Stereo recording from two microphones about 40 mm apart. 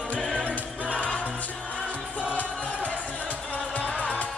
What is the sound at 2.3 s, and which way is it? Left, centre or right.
Music, left.